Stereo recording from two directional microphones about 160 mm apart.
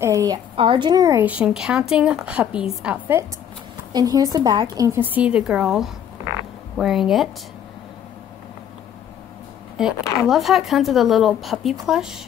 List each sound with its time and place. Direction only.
0.0 s a woman's voice: 20° right (ahead or behind)
0.6 s a woman's voice: 30° right (ahead or behind)
1.2 s a woman's voice: 10° right (ahead or behind)
3.9 s a woman's voice: 25° right (ahead or behind); by 7.2 s centre (ahead or behind)
10.2 s speech: centre (ahead or behind)